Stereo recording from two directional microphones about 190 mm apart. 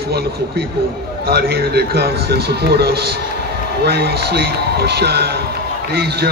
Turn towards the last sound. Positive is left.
turn(degrees=-55)  # may be behind; listen again after turning